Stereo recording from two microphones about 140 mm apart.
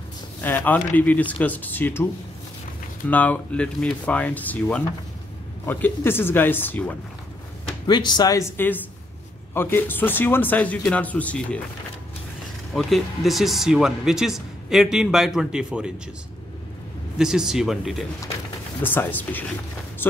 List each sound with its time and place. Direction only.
0.4 s speech: 15° left (ahead or behind)
3.1 s speech: 10° left (ahead or behind)
7.8 s speech: 30° left (ahead or behind); by 11.6 s 10° left (ahead or behind)
12.7 s speech: centre (ahead or behind)
17.2 s speech: 5° right (ahead or behind)
18.8 s speech: 15° left (ahead or behind)